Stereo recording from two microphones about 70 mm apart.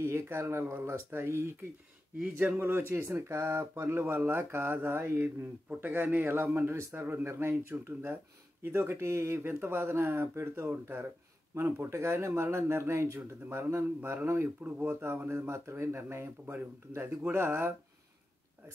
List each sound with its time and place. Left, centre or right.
0.0 s speech: right